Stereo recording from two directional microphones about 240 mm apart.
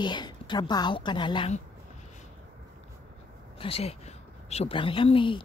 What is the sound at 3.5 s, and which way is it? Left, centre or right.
Speech, left.